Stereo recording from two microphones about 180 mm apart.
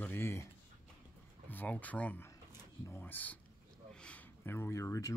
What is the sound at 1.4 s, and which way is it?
Speech, 10° left (ahead or behind).